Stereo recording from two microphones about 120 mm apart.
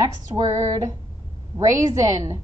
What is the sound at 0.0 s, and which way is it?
Music, 30° right (ahead or behind).